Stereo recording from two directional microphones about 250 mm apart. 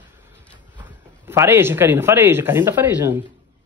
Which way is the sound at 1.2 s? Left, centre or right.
Centre.